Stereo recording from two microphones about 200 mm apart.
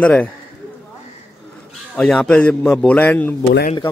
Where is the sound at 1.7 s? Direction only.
5° left (ahead or behind).